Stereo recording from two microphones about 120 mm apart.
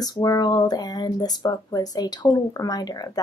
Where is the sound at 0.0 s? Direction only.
30° left (ahead or behind).